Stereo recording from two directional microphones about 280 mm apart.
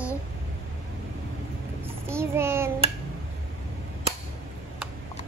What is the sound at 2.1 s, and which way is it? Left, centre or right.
Child singing, centre.